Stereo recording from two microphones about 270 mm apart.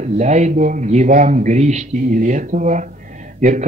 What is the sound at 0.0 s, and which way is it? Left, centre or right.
Speech, right.